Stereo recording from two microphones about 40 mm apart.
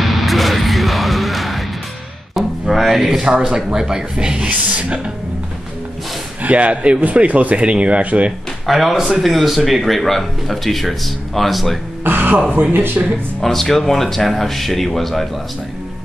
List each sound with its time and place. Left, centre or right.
0.0 s music: centre
3.2 s speech: centre
4.5 s speech: right
6.4 s speech: right
8.6 s speech: centre
12.0 s speech: right
13.4 s speech: centre